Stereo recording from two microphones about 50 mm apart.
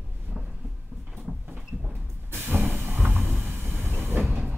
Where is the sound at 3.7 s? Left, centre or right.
Right.